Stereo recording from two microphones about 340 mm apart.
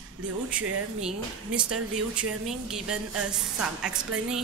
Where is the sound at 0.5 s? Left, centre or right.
Centre.